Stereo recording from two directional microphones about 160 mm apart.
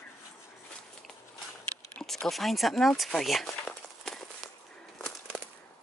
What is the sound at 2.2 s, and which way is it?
Speech, centre (ahead or behind).